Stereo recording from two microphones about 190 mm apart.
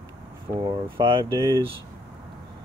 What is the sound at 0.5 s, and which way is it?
Speech, 25° right (ahead or behind).